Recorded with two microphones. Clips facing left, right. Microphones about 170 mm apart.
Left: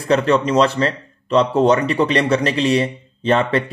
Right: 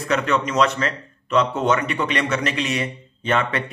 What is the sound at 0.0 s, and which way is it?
Speech, 30° left (ahead or behind).